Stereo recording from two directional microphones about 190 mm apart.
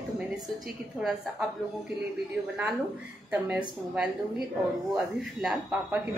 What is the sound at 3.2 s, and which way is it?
A woman's voice, 5° right (ahead or behind).